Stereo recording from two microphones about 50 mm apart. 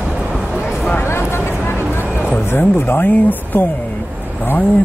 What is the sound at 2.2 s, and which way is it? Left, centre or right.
Speech, left.